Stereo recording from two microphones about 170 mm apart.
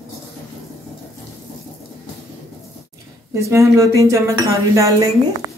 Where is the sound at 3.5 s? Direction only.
15° right (ahead or behind).